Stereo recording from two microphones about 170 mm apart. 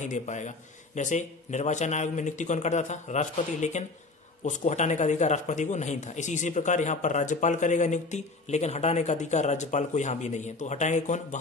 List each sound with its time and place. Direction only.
0.0 s speech: 45° left (ahead or behind)